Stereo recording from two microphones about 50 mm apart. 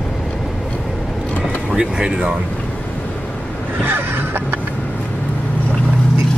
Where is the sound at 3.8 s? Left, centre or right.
Right.